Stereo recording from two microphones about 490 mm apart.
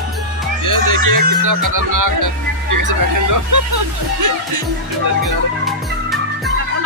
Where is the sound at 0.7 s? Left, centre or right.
Right.